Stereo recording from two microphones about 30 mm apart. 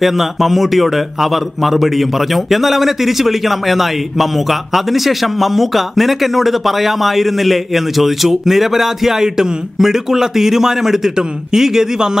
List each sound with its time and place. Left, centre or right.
0.0 s a man's voice: centre